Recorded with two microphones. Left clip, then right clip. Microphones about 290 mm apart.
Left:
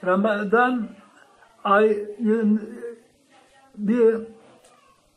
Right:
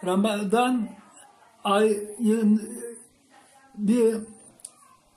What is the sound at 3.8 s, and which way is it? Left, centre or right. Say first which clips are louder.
Speech: left 4 dB; right.